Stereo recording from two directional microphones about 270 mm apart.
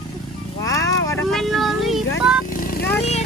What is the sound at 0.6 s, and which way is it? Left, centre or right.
Speech, centre.